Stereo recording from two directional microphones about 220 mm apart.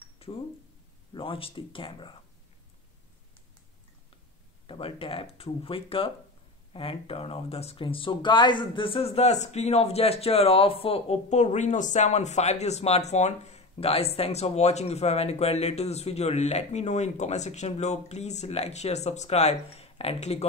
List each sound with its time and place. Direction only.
0.2 s a sound: 25° left (ahead or behind)
1.1 s speech: 25° left (ahead or behind)
4.6 s speech: 25° left (ahead or behind)